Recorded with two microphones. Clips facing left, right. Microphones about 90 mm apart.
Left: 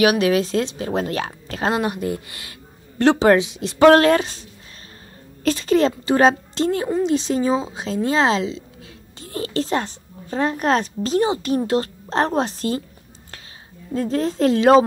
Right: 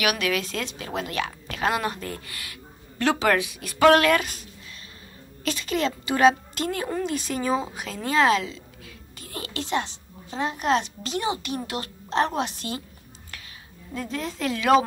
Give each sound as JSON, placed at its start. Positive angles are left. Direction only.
{"t": 0.0, "sound": "a woman's voice", "side_deg": 30}
{"t": 1.8, "sound": "a woman's voice", "side_deg": 20}
{"t": 13.9, "sound": "a woman's voice", "side_deg": 35}